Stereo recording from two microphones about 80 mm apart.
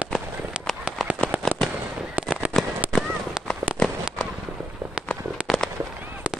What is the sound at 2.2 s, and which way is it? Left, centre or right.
Fireworks, centre.